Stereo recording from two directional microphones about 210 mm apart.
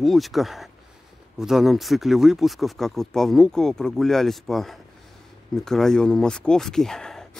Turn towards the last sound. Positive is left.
turn(degrees=0)  # may be behind; listen again after turning